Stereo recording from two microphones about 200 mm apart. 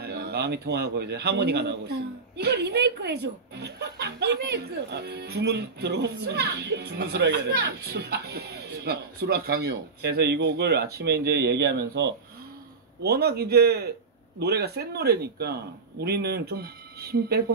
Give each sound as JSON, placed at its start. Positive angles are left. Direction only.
{"t": 0.0, "sound": "a man's voice", "side_deg": -55}